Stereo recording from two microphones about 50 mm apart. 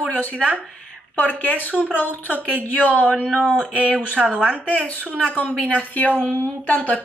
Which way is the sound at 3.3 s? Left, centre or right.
Centre.